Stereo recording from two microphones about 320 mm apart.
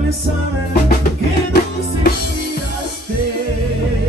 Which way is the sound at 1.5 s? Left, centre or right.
Left.